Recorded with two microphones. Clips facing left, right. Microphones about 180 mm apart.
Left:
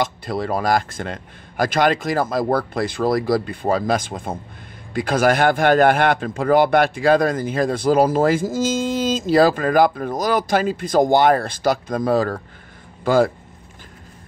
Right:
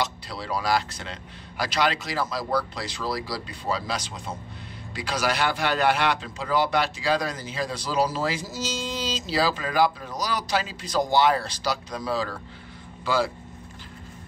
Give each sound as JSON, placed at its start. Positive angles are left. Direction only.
{"t": 0.0, "sound": "a man's voice", "side_deg": 50}